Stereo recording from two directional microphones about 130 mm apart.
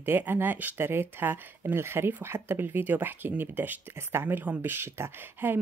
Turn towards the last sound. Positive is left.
turn(degrees=-15)  # may be behind; listen again after turning